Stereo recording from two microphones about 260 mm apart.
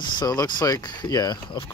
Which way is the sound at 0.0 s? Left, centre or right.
Centre.